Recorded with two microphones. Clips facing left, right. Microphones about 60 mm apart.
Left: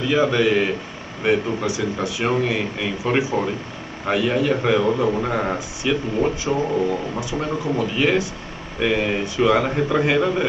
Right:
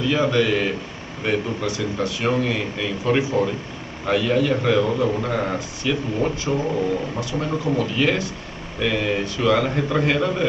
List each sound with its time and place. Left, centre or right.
0.0 s a man's voice: centre
3.2 s a man's voice: centre
9.8 s a man's voice: centre